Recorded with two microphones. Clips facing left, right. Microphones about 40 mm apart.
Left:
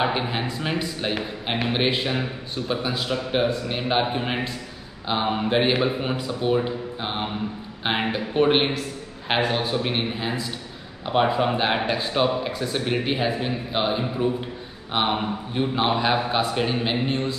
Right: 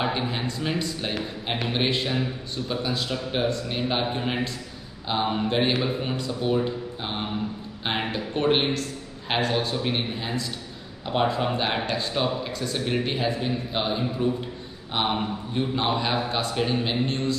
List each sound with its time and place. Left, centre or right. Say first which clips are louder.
0.0 s speech: left 3 dB; centre